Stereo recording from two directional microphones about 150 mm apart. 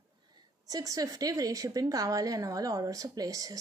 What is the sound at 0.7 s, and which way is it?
A woman's voice, 25° right (ahead or behind).